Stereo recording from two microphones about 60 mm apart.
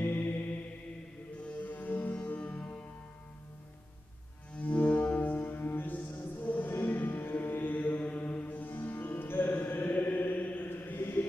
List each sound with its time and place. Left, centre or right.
0.0 s mantra: left
1.4 s music: left
4.6 s music: left
7.2 s music: left
9.7 s mantra: left